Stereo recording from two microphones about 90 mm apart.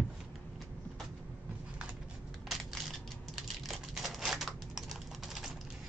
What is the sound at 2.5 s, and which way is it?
Single-lens reflex camera, centre (ahead or behind).